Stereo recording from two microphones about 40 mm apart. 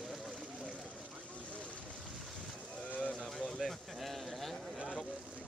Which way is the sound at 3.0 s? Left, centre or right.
Centre.